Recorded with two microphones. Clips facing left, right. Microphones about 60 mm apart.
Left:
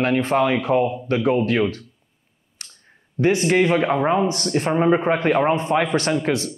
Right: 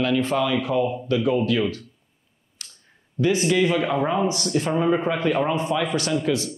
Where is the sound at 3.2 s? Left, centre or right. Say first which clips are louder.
Left 2 dB; left.